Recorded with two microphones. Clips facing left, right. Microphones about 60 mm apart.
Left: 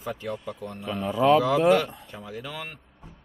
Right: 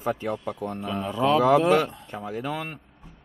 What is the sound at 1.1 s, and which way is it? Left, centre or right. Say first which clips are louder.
Speech: left 3 dB; centre.